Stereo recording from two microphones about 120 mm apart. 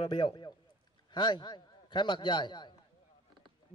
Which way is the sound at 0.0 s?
35° left (ahead or behind).